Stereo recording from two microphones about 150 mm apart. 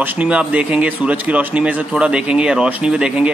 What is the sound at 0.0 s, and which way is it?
Speech, 10° right (ahead or behind).